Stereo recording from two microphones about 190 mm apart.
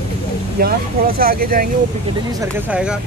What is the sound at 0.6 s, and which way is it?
Speech, 55° right (ahead or behind).